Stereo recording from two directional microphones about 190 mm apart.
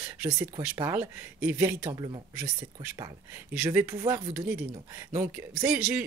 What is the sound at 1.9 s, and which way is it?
Speech, 25° right (ahead or behind).